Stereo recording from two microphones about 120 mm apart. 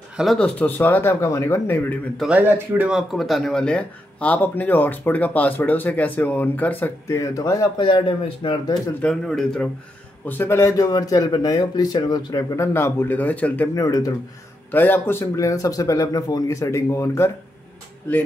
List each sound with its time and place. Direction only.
0.1 s speech: centre (ahead or behind)
0.6 s speech: 15° left (ahead or behind)
2.3 s speech: 15° right (ahead or behind)
2.9 s speech: centre (ahead or behind); by 6.9 s 15° left (ahead or behind)
7.1 s a man's voice: 25° left (ahead or behind)
7.8 s speech: 45° left (ahead or behind)
9.0 s speech: 5° left (ahead or behind)
10.2 s speech: 20° left (ahead or behind); by 12.4 s 35° left (ahead or behind)
12.5 s speech: 20° left (ahead or behind)
13.7 s a man's voice: 30° left (ahead or behind)
14.7 s a man's voice: 15° left (ahead or behind)